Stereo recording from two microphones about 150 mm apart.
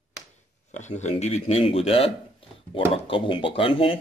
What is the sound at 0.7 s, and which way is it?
Speech, 50° left (ahead or behind).